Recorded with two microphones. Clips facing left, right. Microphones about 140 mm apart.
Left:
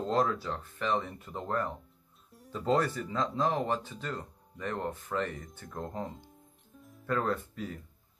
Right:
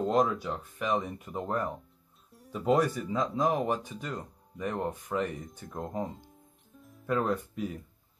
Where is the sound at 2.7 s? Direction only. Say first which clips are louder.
Right 3 dB; 15° right (ahead or behind).